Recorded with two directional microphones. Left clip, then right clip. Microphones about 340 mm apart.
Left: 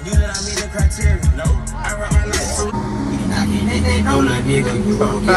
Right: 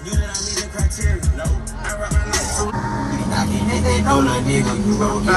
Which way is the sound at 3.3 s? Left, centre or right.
Right.